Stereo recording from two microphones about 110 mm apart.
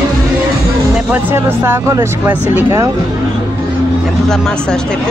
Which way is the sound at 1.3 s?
20° right (ahead or behind).